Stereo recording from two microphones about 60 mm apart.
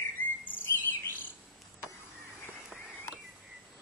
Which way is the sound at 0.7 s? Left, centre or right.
Left.